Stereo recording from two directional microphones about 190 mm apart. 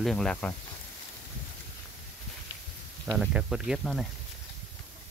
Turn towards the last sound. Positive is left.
turn(degrees=0)  # may be behind; listen again after turning